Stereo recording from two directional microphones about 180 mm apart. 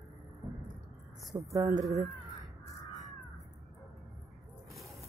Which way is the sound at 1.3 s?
15° right (ahead or behind).